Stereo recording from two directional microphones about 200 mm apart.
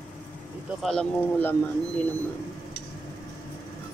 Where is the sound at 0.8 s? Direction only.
5° left (ahead or behind).